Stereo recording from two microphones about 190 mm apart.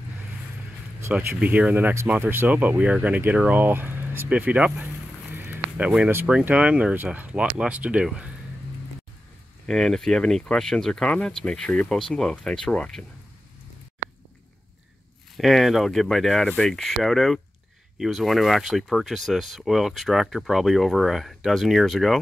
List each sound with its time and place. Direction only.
1.0 s speech: 10° right (ahead or behind)
9.7 s speech: centre (ahead or behind)
15.3 s speech: centre (ahead or behind)